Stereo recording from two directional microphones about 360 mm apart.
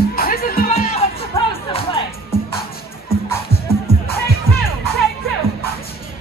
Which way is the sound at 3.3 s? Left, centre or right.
Centre.